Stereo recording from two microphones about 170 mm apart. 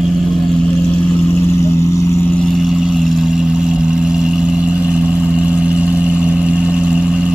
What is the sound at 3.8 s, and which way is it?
Vehicle, 5° right (ahead or behind).